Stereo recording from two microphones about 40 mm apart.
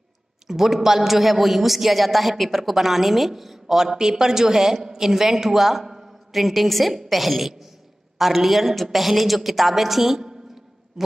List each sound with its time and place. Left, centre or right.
0.5 s a man's voice: centre